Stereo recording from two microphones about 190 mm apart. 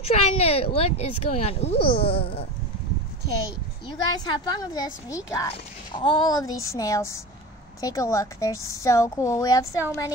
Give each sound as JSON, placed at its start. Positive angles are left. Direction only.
{"t": 0.0, "sound": "speech", "side_deg": 30}
{"t": 4.2, "sound": "a woman's voice", "side_deg": 20}